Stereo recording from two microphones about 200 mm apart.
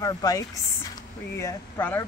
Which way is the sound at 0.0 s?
20° left (ahead or behind).